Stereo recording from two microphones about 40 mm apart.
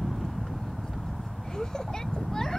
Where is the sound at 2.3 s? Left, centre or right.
Centre.